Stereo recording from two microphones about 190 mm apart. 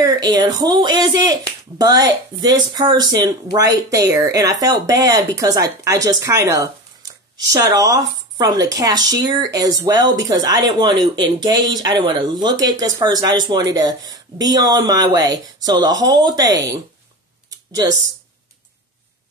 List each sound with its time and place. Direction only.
0.0 s speech: 20° right (ahead or behind)
17.5 s typing: 20° right (ahead or behind)